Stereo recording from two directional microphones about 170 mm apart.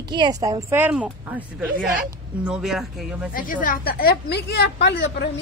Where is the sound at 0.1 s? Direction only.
25° right (ahead or behind); by 3.3 s 5° right (ahead or behind).